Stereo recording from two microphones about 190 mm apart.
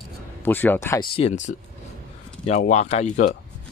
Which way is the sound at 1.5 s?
50° left (ahead or behind).